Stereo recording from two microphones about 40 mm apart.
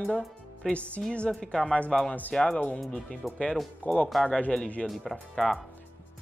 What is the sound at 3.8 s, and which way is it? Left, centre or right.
Speech, left.